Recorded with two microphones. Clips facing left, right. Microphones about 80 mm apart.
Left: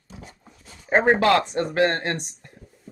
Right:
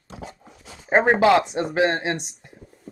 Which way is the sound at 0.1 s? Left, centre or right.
Right.